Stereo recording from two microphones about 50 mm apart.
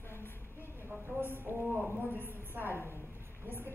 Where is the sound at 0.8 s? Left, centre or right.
Right.